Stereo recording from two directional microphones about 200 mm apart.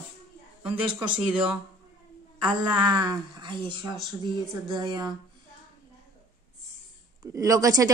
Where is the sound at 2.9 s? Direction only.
20° right (ahead or behind).